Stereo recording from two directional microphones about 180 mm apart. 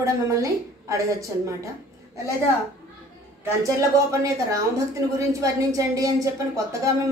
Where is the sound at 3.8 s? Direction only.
20° right (ahead or behind).